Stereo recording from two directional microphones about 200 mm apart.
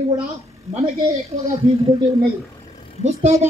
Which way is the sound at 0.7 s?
30° right (ahead or behind).